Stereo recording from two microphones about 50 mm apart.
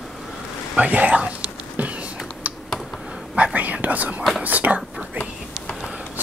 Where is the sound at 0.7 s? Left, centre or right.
Right.